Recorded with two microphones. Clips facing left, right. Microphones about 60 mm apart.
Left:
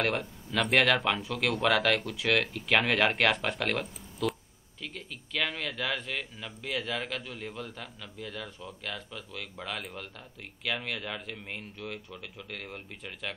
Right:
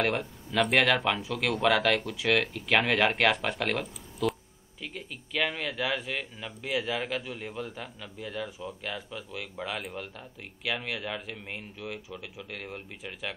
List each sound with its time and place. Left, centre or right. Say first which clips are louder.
0.0 s speech: right 2 dB; centre
4.2 s a sound: right 2 dB; centre
6.3 s speech: right 2 dB; centre
6.7 s a man's voice: right 3 dB; centre